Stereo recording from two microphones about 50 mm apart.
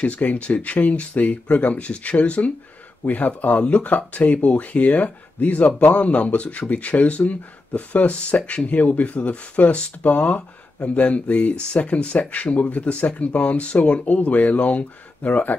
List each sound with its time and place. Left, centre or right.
0.0 s speech: left